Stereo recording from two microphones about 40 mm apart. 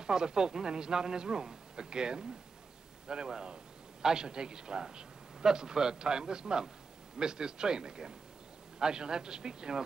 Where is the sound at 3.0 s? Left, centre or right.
Centre.